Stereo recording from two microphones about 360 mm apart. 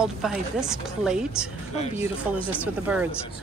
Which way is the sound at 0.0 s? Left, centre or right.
Centre.